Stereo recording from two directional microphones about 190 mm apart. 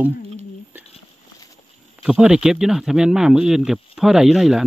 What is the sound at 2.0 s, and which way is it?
Speech, 5° right (ahead or behind).